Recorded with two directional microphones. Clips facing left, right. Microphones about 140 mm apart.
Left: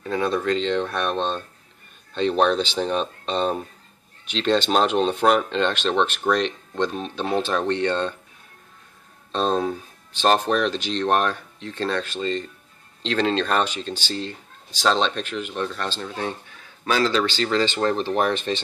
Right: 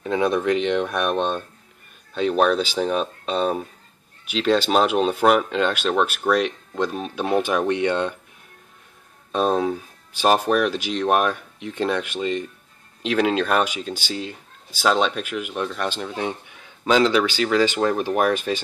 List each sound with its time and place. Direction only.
0.0 s speech: 15° right (ahead or behind)
9.3 s speech: 10° right (ahead or behind)